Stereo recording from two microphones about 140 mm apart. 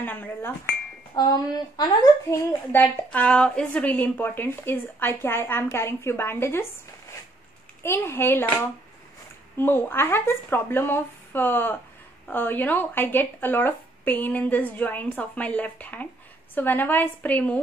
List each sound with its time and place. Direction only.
0.0 s a woman's voice: 15° left (ahead or behind)
1.1 s speech: 30° left (ahead or behind)
2.7 s a woman's voice: 10° left (ahead or behind)